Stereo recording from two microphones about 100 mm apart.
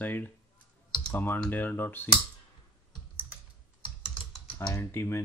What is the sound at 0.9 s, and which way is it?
Clicking, 10° left (ahead or behind).